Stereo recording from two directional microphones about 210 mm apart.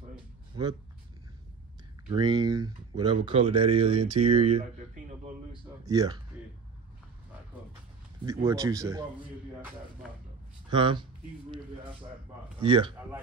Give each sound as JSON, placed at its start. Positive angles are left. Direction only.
{"t": 0.5, "sound": "speech", "side_deg": -20}
{"t": 2.0, "sound": "speech", "side_deg": -20}
{"t": 5.5, "sound": "speech", "side_deg": -20}
{"t": 8.5, "sound": "speech", "side_deg": -15}
{"t": 10.7, "sound": "speech", "side_deg": -20}
{"t": 12.5, "sound": "a man's voice", "side_deg": -25}